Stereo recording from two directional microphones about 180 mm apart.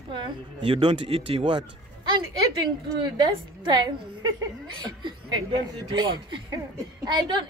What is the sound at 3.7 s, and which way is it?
A woman's voice, 20° right (ahead or behind).